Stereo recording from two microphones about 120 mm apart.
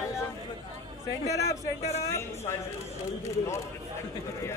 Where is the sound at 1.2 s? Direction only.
25° left (ahead or behind).